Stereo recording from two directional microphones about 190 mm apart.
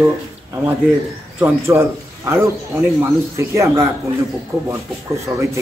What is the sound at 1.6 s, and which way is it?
Speech, 15° right (ahead or behind).